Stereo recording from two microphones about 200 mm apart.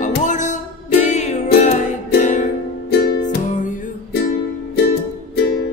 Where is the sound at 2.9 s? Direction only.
55° left (ahead or behind).